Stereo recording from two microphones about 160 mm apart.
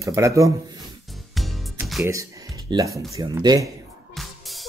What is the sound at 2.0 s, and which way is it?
Music, 20° right (ahead or behind).